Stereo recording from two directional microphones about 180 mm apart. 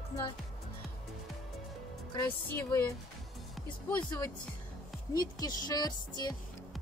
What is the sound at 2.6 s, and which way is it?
Speech, 10° left (ahead or behind).